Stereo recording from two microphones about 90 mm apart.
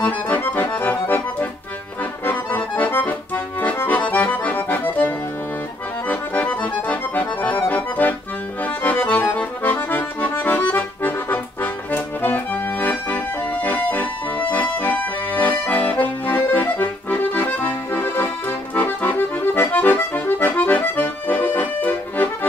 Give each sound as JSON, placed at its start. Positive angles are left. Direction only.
{"t": 0.0, "sound": "accordion", "side_deg": 20}
{"t": 12.8, "sound": "music", "side_deg": 20}
{"t": 14.5, "sound": "accordion", "side_deg": 20}